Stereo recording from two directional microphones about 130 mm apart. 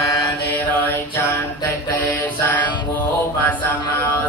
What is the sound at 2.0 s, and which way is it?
Mantra, 15° left (ahead or behind).